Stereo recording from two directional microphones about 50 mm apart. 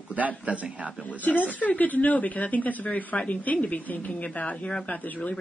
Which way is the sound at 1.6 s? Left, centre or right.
Left.